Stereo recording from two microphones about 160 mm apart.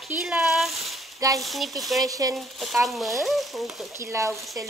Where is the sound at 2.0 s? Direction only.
20° right (ahead or behind).